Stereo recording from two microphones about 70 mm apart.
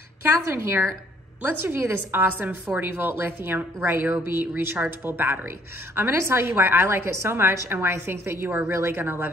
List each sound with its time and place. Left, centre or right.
0.2 s a woman's voice: right
5.9 s a woman's voice: right